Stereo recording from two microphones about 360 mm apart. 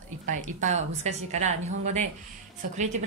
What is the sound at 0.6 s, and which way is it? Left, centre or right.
A woman's voice, centre.